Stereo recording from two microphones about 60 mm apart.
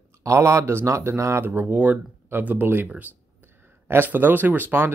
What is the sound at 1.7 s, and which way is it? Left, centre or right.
Speech, right.